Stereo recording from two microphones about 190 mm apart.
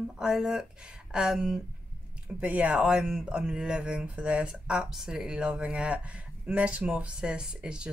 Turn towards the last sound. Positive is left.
turn(degrees=-5)  # may be behind; listen again after turning